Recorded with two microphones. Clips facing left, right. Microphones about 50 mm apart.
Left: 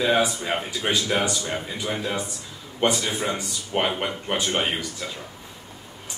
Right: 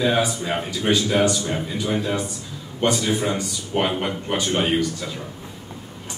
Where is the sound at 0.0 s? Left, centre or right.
Centre.